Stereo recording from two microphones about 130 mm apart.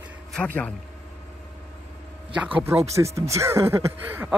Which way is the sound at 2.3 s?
10° right (ahead or behind).